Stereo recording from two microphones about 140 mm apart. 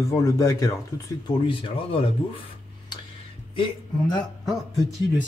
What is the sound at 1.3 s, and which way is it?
Speech, 40° left (ahead or behind).